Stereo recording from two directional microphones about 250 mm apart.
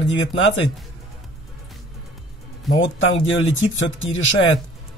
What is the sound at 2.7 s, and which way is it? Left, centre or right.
Speech, left.